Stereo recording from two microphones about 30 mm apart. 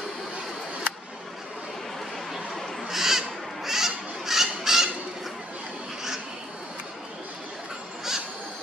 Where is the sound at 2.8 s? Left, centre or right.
Centre.